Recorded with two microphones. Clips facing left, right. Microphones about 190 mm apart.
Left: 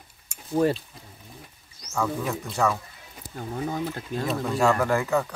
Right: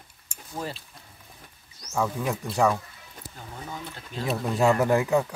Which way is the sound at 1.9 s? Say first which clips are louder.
Even; 10° right (ahead or behind).